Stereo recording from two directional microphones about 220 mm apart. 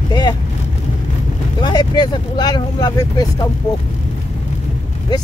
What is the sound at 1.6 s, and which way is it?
Speech, 20° left (ahead or behind).